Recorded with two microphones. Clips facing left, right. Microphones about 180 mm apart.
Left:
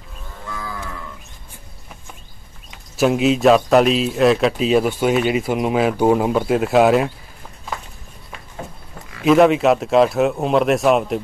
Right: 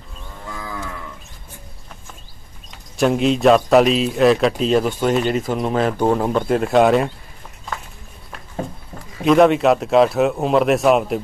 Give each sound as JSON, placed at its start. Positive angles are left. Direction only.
{"t": 3.0, "sound": "speech", "side_deg": 5}
{"t": 9.2, "sound": "speech", "side_deg": 0}